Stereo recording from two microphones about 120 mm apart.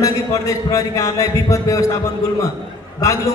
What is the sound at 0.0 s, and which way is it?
A man's voice, 25° left (ahead or behind).